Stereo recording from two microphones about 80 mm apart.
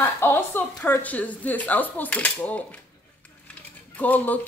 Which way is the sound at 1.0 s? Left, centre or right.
Centre.